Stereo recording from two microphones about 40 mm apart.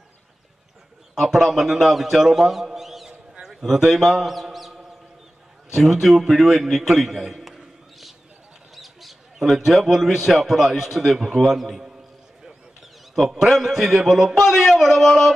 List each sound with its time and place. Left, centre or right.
1.3 s a man's voice: centre
3.1 s a sound: centre
3.6 s a man's voice: centre
8.7 s a man's voice: centre
13.1 s a man's voice: centre